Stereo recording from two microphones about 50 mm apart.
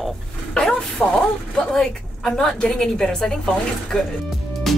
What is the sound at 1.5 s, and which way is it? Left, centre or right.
A woman's voice, centre.